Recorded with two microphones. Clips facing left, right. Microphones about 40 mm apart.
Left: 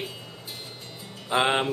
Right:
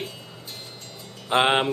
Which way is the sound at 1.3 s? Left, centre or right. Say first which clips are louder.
Right 3 dB; right.